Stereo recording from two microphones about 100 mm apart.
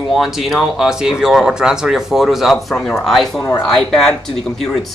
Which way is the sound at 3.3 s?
30° left (ahead or behind).